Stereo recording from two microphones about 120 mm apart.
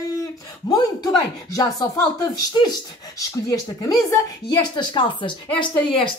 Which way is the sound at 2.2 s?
35° left (ahead or behind).